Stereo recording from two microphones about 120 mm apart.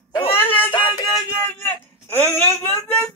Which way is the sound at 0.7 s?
45° left (ahead or behind).